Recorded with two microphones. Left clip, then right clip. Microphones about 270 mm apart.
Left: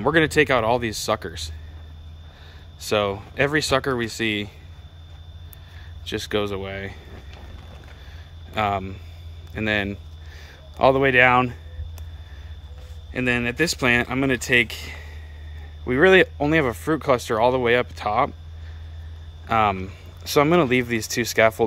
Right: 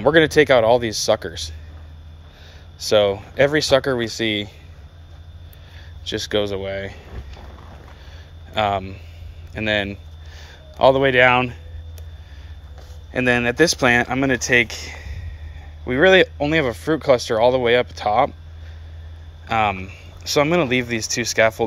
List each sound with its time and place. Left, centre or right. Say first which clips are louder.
0.0 s speech: right 4 dB; centre
2.8 s speech: right 6 dB; centre
6.0 s speech: right 3 dB; centre
8.5 s speech: right 3 dB; centre
13.1 s speech: right 5 dB; centre
19.5 s speech: even; centre